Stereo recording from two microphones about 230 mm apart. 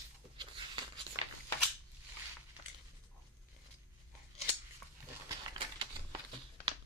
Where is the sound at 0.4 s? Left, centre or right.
Right.